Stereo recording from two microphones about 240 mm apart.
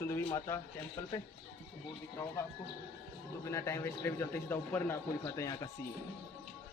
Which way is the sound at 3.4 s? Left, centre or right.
Centre.